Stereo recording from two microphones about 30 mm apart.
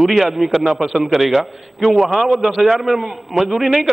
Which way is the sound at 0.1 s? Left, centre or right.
Centre.